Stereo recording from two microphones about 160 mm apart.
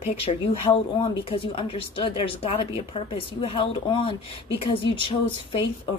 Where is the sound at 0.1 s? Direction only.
40° left (ahead or behind).